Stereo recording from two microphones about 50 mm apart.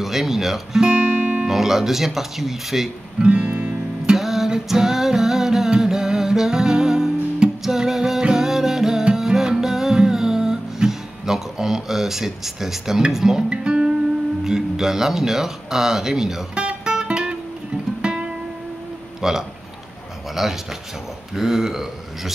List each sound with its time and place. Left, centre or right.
0.0 s speech: centre
0.8 s music: centre
1.5 s speech: centre
3.2 s guitar: centre
4.2 s music: centre
14.4 s speech: centre
16.5 s music: centre
19.2 s speech: centre